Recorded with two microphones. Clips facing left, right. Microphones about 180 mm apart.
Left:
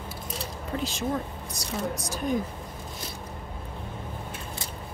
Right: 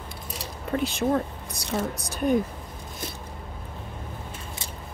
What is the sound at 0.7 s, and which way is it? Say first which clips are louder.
Speech: right 5 dB; 60° right (ahead or behind).